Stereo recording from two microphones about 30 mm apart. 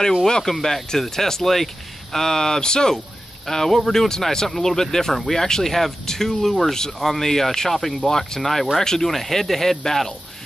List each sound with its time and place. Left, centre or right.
0.3 s speech: centre
3.4 s speech: centre
8.1 s speech: centre